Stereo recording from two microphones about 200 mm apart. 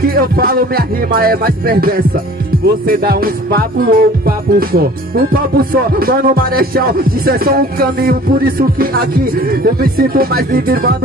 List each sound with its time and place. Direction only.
0.0 s speech: 50° right (ahead or behind)